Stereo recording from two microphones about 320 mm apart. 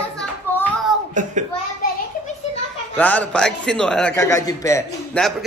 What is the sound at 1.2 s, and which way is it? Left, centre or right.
Speech, right.